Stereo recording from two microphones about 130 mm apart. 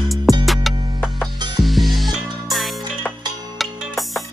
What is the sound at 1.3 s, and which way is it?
Music, 35° right (ahead or behind).